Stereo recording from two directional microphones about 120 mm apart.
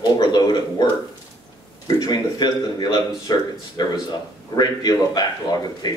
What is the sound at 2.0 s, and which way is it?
A man's voice, 35° left (ahead or behind).